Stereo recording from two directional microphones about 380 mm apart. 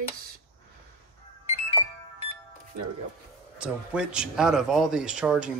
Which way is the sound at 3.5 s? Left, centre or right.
Centre.